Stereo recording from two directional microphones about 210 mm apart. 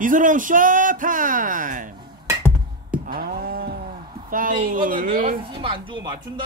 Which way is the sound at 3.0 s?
45° right (ahead or behind).